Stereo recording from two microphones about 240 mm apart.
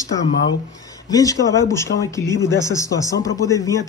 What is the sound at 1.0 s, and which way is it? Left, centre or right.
Speech, centre.